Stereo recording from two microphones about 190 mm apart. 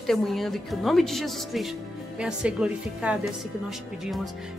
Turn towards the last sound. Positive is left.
turn(degrees=0)  # may be behind; listen again after turning